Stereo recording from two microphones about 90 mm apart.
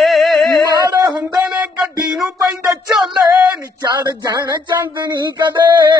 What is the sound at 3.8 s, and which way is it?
Music, 45° right (ahead or behind).